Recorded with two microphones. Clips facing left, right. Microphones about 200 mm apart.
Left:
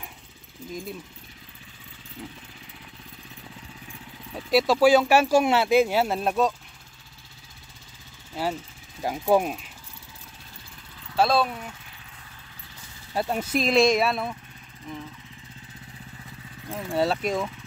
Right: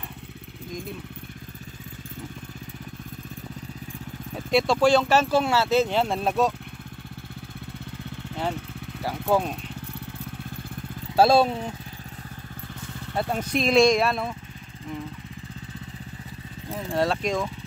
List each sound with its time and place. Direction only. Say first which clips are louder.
4.5 s speech: left 1 dB; 5° left (ahead or behind)
8.3 s vehicle: left 1 dB; 65° right (ahead or behind)
9.0 s speech: left 2 dB; 15° left (ahead or behind)
11.1 s speech: right 4 dB; 30° right (ahead or behind)
13.1 s speech: even; 5° left (ahead or behind)
16.7 s speech: even; centre (ahead or behind)